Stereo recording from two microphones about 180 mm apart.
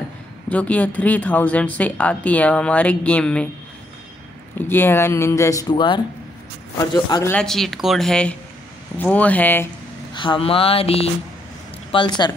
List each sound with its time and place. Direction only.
0.5 s a woman's voice: 10° left (ahead or behind)
4.6 s a woman's voice: 10° left (ahead or behind)
7.3 s a woman's voice: centre (ahead or behind)
10.1 s a sound: 25° left (ahead or behind)
11.9 s a man's voice: 25° left (ahead or behind)